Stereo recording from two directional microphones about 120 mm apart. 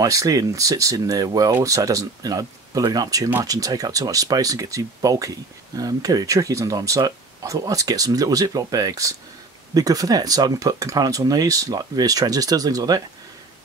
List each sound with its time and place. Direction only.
0.0 s speech: 30° right (ahead or behind)